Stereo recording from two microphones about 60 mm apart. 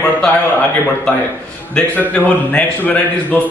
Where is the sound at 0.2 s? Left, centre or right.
Centre.